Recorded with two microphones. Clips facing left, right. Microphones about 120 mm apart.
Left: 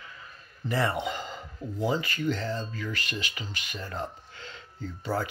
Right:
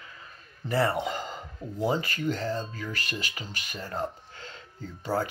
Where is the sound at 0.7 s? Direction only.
30° right (ahead or behind).